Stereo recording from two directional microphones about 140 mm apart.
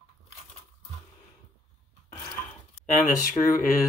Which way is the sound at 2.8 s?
70° left (ahead or behind).